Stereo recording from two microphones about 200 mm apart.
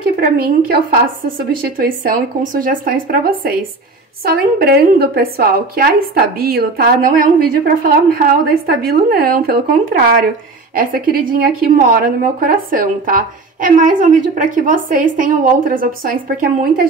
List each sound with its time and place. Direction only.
0.2 s a woman's voice: 50° right (ahead or behind)